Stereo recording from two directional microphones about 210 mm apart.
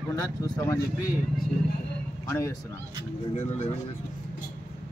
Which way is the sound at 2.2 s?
10° left (ahead or behind).